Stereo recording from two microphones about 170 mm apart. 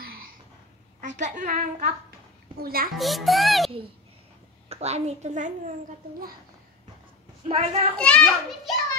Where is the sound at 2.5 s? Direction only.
60° right (ahead or behind).